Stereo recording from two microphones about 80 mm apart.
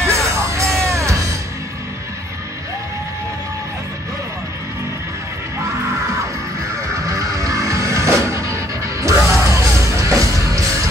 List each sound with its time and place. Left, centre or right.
0.0 s music: right
6.9 s music: right